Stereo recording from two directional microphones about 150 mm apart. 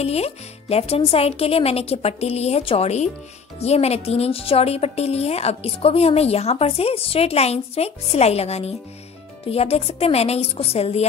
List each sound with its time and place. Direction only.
0.0 s a woman's voice: 45° left (ahead or behind)